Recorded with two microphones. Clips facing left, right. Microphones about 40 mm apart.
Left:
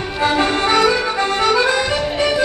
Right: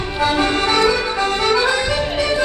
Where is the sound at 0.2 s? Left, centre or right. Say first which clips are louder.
Left 1 dB; left.